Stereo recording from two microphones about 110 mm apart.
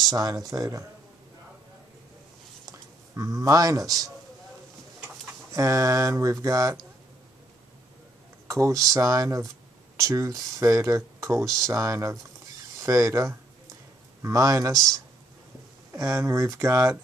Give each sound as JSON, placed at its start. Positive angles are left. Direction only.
{"t": 0.1, "sound": "speech", "side_deg": -35}
{"t": 3.2, "sound": "speech", "side_deg": -30}
{"t": 5.5, "sound": "speech", "side_deg": -30}
{"t": 8.5, "sound": "speech", "side_deg": -30}
{"t": 15.9, "sound": "speech", "side_deg": -30}